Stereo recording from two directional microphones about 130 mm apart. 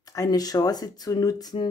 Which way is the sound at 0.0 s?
25° left (ahead or behind).